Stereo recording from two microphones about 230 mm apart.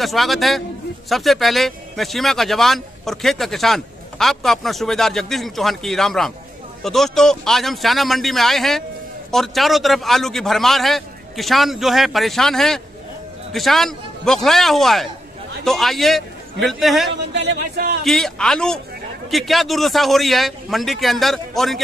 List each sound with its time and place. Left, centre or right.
0.0 s a man's voice: centre
17.3 s speech: right
18.0 s a man's voice: centre